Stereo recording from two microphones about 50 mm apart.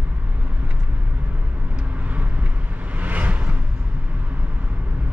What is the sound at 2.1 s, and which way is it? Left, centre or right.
Vehicle, right.